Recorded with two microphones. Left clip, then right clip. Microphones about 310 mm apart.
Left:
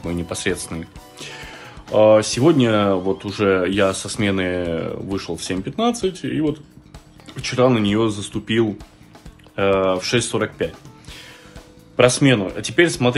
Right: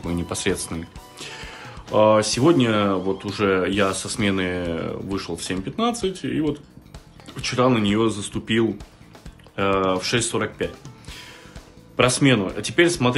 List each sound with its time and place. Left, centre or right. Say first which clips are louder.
0.0 s speech: left 1 dB; centre